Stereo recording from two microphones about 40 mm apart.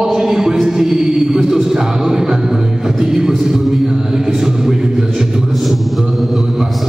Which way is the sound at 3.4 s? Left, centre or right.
Centre.